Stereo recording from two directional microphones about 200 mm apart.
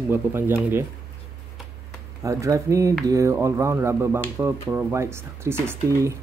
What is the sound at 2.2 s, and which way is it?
Speech, 15° right (ahead or behind).